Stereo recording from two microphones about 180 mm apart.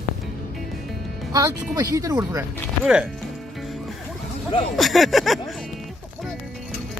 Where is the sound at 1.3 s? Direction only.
20° right (ahead or behind).